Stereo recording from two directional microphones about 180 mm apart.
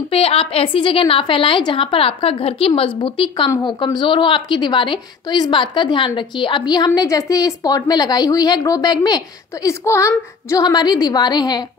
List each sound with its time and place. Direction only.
0.1 s a woman's voice: 30° left (ahead or behind)